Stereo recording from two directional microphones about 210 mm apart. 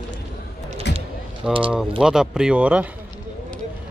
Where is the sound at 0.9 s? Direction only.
55° left (ahead or behind).